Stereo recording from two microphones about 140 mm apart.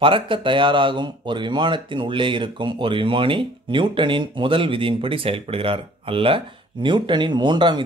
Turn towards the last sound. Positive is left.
turn(degrees=-30)  # may be behind; listen again after turning